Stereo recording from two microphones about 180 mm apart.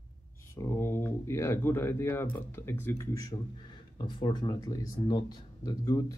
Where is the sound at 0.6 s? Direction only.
15° left (ahead or behind).